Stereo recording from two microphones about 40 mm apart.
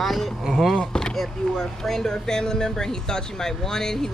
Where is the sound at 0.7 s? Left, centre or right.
Centre.